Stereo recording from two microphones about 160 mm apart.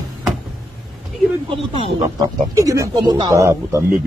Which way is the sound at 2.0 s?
25° right (ahead or behind).